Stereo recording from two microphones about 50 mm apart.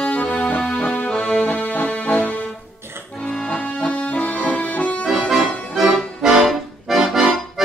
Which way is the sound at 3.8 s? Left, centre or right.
Left.